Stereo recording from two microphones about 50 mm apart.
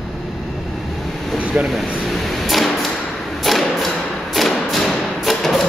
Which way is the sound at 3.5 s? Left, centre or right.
Centre.